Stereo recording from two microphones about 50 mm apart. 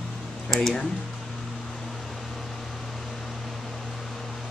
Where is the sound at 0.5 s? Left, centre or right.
Centre.